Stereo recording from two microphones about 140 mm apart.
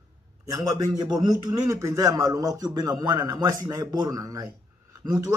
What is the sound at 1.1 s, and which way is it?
Speech, 30° right (ahead or behind).